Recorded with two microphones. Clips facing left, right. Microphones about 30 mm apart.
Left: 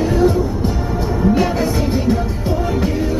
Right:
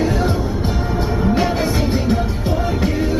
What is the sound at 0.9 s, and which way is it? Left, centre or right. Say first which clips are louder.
Music: left 2 dB; right.